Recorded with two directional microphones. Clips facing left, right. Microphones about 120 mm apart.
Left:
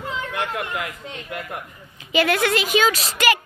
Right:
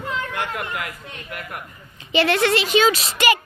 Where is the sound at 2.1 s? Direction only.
5° left (ahead or behind).